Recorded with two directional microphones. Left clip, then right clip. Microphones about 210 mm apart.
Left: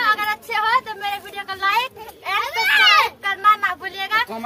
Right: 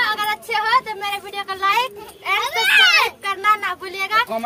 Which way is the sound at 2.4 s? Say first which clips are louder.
Right 1 dB; 35° right (ahead or behind).